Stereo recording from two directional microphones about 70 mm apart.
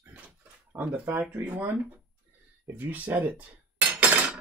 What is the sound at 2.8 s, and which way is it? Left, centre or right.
Speech, right.